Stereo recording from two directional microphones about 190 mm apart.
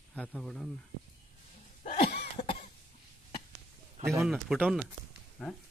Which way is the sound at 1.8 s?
40° left (ahead or behind).